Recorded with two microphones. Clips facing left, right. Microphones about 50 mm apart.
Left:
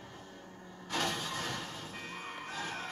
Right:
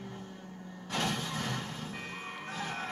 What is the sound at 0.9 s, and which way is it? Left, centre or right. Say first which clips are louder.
Music: right 1 dB; right.